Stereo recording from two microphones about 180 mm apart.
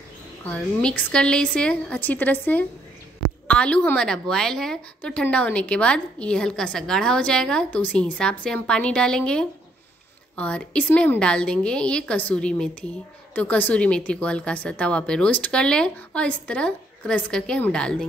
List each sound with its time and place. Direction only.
0.5 s a woman's voice: 5° left (ahead or behind)